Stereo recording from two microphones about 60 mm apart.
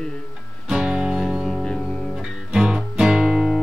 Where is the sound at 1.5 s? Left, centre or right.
Centre.